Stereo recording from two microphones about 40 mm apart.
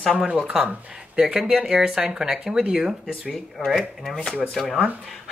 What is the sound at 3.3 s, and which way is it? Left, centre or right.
Speech, centre.